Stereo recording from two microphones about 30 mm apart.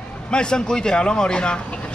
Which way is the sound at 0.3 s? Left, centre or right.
Left.